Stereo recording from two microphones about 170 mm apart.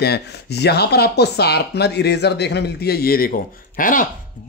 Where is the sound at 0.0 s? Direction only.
75° left (ahead or behind).